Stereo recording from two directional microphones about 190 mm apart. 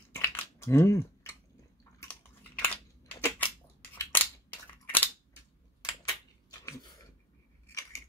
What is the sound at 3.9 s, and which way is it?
Scissors, 10° left (ahead or behind).